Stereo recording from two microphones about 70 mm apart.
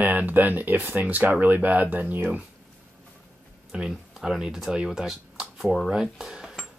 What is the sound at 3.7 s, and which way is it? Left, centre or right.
Speech, centre.